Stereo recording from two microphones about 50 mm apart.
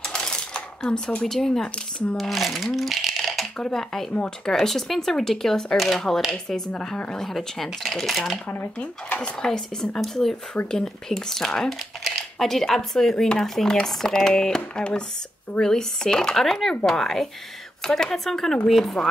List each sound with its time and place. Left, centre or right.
0.0 s coin: centre
0.8 s speech: centre
3.1 s a sound: centre
3.5 s speech: centre
6.3 s speech: centre